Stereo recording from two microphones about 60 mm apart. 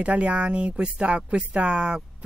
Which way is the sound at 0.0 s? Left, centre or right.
Right.